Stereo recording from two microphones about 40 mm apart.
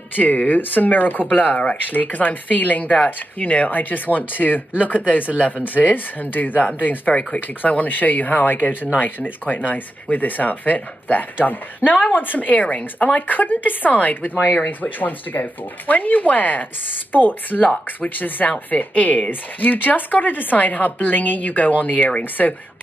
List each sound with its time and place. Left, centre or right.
0.1 s speech: left
7.1 s speech: left
7.6 s speech: left